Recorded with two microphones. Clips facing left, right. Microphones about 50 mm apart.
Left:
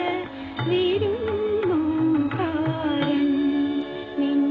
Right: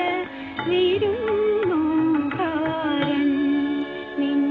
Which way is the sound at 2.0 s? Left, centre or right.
Right.